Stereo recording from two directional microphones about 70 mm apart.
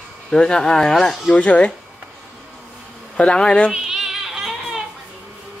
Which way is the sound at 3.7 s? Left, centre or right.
Centre.